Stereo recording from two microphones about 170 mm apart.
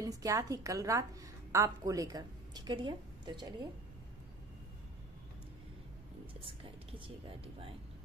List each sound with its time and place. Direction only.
0.0 s a woman's voice: 20° right (ahead or behind)
6.4 s speech: 30° right (ahead or behind)